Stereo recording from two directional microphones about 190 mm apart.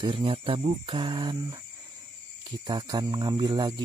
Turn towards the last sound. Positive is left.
turn(degrees=-20)  # may be behind; listen again after turning